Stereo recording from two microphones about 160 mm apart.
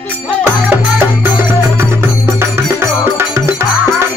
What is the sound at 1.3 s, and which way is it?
Music, 15° right (ahead or behind).